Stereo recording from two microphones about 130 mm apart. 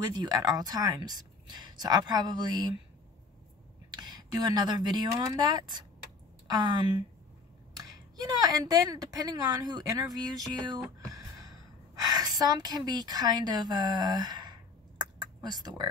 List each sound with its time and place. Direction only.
0.1 s speech: 30° right (ahead or behind)
3.9 s speech: 30° right (ahead or behind)